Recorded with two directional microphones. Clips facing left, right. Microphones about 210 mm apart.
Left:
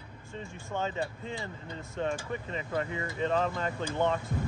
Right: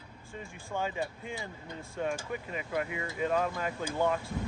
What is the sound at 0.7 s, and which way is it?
Speech, 10° right (ahead or behind).